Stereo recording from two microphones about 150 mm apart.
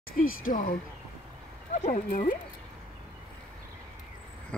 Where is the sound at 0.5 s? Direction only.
60° left (ahead or behind).